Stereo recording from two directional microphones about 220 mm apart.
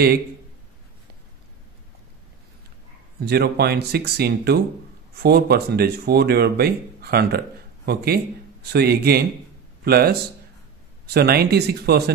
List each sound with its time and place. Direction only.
3.2 s speech: 45° right (ahead or behind)
11.1 s speech: 45° right (ahead or behind)